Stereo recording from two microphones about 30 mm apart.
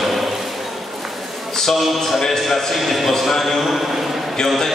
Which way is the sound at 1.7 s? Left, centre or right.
Centre.